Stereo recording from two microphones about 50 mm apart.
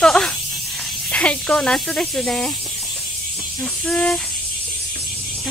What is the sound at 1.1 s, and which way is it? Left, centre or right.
Speech, left.